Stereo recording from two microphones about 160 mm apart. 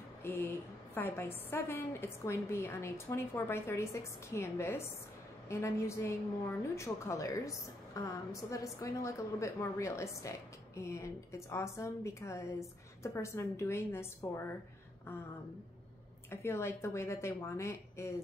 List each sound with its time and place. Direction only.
0.2 s a woman's voice: 15° left (ahead or behind)
16.3 s a woman's voice: 15° left (ahead or behind)